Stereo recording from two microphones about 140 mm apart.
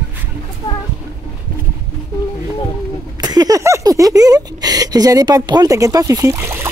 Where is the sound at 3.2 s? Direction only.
30° right (ahead or behind).